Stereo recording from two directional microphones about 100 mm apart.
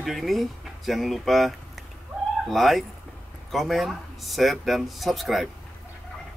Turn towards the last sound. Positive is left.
turn(degrees=0)  # may be behind; listen again after turning